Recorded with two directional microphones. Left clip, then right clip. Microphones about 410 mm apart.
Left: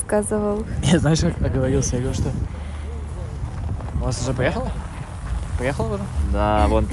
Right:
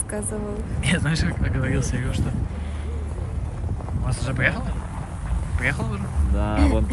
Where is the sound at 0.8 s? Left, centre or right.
Centre.